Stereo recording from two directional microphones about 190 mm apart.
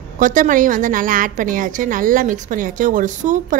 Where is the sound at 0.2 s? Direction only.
45° right (ahead or behind).